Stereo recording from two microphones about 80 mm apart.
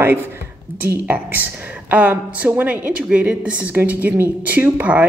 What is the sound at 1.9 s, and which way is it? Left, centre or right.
A woman's voice, centre.